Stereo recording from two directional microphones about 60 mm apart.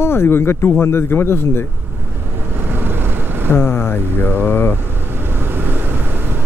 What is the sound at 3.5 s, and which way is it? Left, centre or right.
Speech, left.